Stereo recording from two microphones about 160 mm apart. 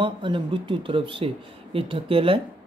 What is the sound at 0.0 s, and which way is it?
Speech, 30° right (ahead or behind).